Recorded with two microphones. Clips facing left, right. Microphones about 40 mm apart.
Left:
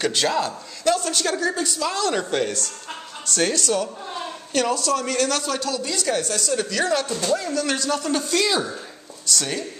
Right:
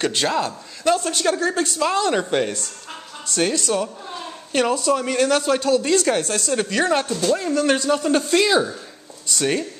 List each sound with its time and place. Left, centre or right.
0.0 s speech: right
1.4 s a woman's voice: right
1.9 s speech: right
3.3 s speech: centre
3.5 s speech: right
7.1 s speech: centre
7.3 s speech: right
8.5 s speech: centre
9.4 s speech: right